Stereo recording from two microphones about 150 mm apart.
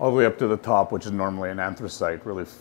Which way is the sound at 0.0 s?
20° left (ahead or behind).